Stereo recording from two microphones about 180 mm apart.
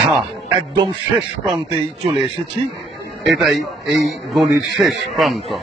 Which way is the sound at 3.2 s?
Centre (ahead or behind).